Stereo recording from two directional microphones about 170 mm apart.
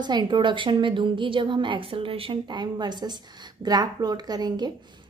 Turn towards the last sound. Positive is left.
turn(degrees=-25)  # may be behind; listen again after turning